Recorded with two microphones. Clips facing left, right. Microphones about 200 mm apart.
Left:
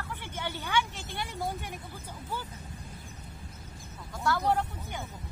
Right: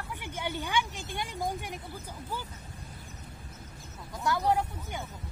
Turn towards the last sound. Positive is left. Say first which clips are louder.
# right 1 dB
turn(degrees=-10)  # may be behind; listen again after turning